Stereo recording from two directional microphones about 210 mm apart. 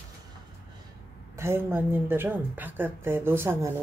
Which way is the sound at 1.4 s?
10° right (ahead or behind).